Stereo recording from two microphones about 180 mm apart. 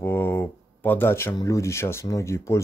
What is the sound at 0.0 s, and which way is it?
Speech, 10° left (ahead or behind).